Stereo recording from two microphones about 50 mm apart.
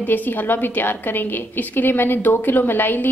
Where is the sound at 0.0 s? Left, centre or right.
Left.